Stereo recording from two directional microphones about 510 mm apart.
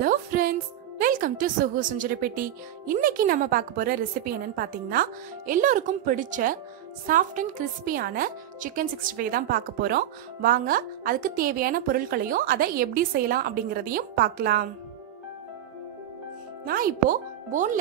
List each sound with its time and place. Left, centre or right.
0.0 s a woman's voice: centre
16.6 s a woman's voice: centre